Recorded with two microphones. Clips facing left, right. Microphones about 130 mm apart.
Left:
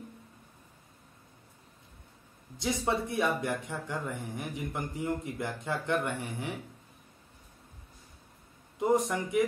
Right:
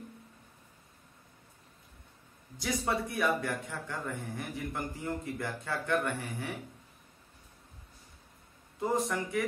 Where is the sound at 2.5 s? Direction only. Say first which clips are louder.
Left 2 dB; 25° left (ahead or behind).